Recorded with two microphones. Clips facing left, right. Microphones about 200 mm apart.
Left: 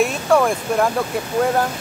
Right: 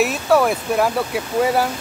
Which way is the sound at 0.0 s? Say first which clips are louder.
Even; 5° right (ahead or behind).